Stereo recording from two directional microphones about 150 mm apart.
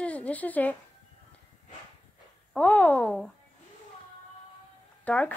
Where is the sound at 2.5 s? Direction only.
10° left (ahead or behind).